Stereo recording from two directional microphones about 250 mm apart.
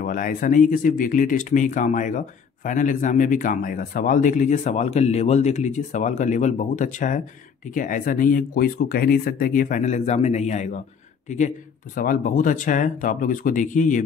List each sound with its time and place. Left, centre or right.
0.0 s speech: left